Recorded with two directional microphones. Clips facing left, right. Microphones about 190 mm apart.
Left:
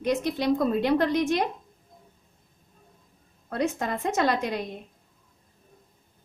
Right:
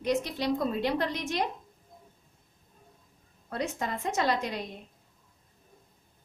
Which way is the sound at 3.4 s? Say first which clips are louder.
Left 5 dB; 55° left (ahead or behind).